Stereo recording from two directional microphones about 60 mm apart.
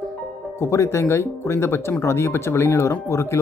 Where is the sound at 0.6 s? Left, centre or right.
Left.